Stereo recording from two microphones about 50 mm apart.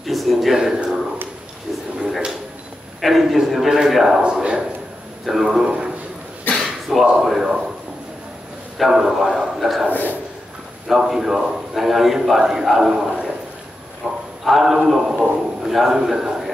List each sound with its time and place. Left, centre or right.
0.0 s a man's voice: centre
2.0 s drawer open or close: centre
3.0 s a man's voice: centre
5.2 s a man's voice: centre
5.7 s a sound: centre
6.5 s a sound: centre
7.2 s a man's voice: centre
8.7 s a man's voice: centre
10.9 s a man's voice: centre
12.9 s a man's voice: centre
14.0 s clip-clop: centre
14.4 s a man's voice: centre